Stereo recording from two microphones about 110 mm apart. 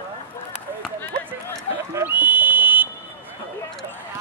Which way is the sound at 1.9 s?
15° right (ahead or behind).